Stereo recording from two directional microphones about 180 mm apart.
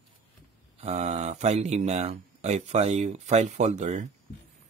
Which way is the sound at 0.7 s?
40° right (ahead or behind).